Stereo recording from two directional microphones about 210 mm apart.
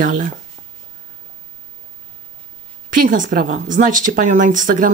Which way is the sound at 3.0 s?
40° right (ahead or behind).